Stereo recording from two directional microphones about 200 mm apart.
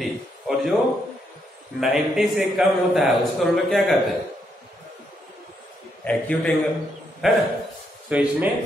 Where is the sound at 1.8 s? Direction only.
Centre (ahead or behind).